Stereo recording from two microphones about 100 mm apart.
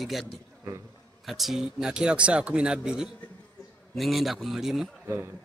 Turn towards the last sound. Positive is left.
turn(degrees=-25)  # may be behind; listen again after turning